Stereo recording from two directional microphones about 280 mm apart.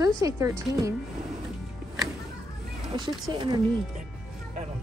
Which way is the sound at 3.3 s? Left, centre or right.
Centre.